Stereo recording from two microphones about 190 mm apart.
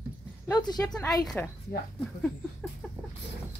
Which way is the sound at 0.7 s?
5° left (ahead or behind).